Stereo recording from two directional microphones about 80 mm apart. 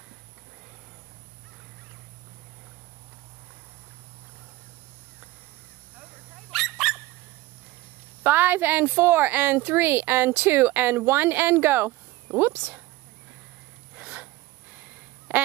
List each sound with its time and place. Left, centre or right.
6.3 s dog: centre
8.2 s speech: right
13.9 s a sound: centre
15.3 s quack: right